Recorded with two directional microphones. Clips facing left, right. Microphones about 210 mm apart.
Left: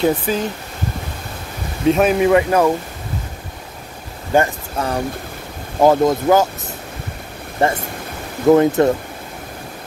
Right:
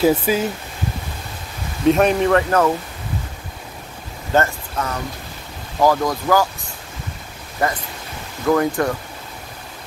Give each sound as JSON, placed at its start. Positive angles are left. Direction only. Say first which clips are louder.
{"t": 0.0, "sound": "speech", "louder": "right 1 dB", "side_deg": -10}
{"t": 1.9, "sound": "a man's voice", "louder": "even", "side_deg": 0}
{"t": 2.2, "sound": "speech", "louder": "left 3 dB", "side_deg": 10}
{"t": 4.3, "sound": "speech", "louder": "left 2 dB", "side_deg": 15}
{"t": 4.7, "sound": "speech", "louder": "left 5 dB", "side_deg": 30}
{"t": 7.6, "sound": "speech", "louder": "left 4 dB", "side_deg": 25}